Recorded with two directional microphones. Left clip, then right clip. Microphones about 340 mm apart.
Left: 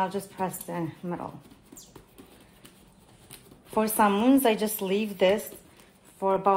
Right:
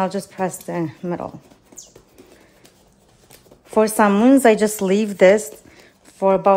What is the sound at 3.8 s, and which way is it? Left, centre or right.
A woman's voice, right.